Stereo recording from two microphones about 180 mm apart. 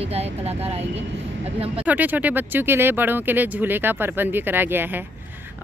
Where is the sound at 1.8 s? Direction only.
10° right (ahead or behind).